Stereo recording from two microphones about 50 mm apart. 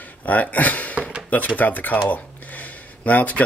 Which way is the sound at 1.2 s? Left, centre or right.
Left.